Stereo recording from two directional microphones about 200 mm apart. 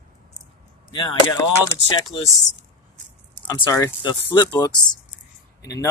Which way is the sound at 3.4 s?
20° left (ahead or behind).